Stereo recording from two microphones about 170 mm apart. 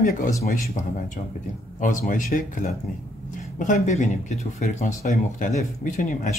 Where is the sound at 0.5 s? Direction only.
45° left (ahead or behind).